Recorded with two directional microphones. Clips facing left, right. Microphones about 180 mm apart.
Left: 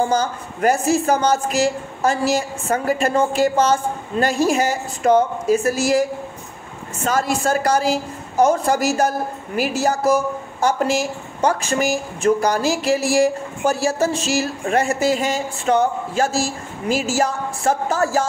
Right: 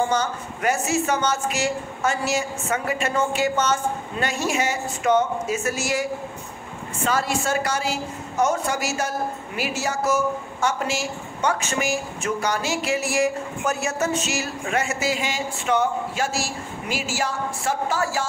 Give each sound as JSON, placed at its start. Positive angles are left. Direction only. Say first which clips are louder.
{"t": 0.1, "sound": "a woman's voice", "louder": "left 3 dB", "side_deg": 35}